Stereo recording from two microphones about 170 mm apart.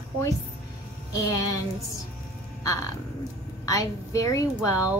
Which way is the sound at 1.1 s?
20° left (ahead or behind).